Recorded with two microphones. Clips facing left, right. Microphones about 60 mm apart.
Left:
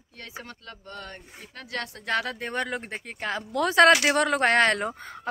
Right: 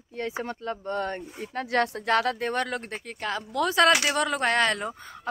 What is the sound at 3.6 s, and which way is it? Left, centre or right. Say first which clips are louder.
Speech: left 3 dB; left.